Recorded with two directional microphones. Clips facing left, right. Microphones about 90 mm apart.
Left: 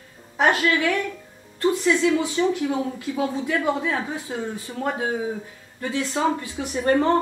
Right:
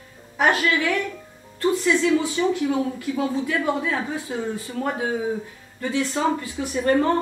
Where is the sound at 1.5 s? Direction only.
20° left (ahead or behind).